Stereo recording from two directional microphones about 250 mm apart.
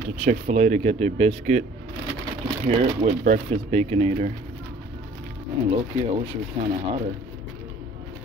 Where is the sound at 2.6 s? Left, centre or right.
Right.